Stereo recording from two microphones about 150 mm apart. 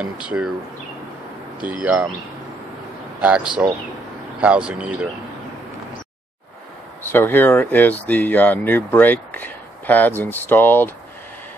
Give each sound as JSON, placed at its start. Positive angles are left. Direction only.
{"t": 0.3, "sound": "speech", "side_deg": -10}
{"t": 1.6, "sound": "speech", "side_deg": -10}
{"t": 3.2, "sound": "speech", "side_deg": -10}
{"t": 7.0, "sound": "speech", "side_deg": 15}